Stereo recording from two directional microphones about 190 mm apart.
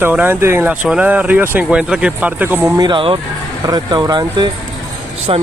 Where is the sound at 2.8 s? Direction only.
25° right (ahead or behind).